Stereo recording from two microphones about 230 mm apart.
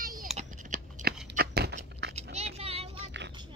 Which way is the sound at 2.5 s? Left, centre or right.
Right.